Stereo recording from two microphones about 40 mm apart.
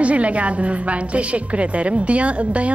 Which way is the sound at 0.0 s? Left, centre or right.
Right.